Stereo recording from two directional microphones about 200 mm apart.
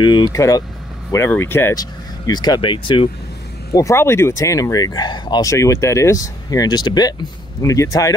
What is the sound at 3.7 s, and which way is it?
Speech, 15° left (ahead or behind).